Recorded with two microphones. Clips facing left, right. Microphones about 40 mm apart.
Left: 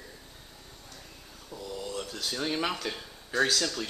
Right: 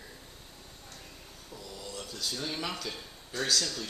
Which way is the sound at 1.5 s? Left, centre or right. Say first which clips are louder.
Left 7 dB; left.